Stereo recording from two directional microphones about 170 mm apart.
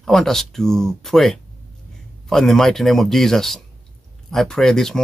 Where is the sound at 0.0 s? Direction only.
Centre (ahead or behind).